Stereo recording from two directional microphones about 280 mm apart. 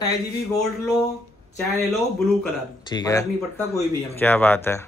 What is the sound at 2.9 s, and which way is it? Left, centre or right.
Speech, centre.